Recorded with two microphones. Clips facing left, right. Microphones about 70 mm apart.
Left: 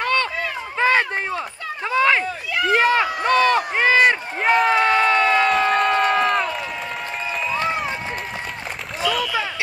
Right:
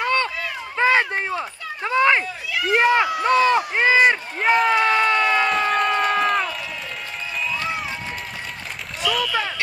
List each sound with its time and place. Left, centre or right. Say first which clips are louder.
0.0 s run: even; centre
0.7 s run: even; centre
1.9 s speech: even; centre
4.4 s speech: left 1 dB; centre
4.8 s crowd: left 1 dB; centre
9.1 s rowboat: right 2 dB; centre